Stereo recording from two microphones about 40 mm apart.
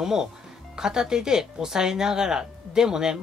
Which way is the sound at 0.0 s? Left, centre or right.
Centre.